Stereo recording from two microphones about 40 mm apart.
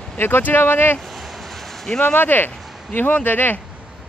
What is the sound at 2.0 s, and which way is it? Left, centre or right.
Speech, left.